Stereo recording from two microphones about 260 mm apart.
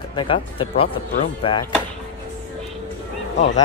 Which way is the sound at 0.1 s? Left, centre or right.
Centre.